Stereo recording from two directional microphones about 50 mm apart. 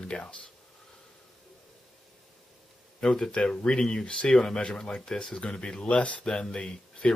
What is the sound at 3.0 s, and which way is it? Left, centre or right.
Speech, centre.